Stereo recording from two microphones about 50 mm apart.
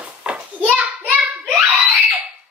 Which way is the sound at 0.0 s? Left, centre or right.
Centre.